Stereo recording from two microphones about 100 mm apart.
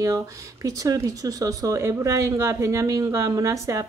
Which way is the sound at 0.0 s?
35° right (ahead or behind).